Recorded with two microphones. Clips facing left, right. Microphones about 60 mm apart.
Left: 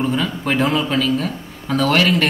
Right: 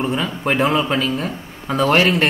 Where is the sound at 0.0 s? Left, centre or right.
Right.